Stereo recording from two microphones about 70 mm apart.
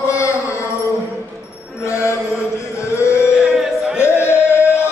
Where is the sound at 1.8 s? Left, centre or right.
Left.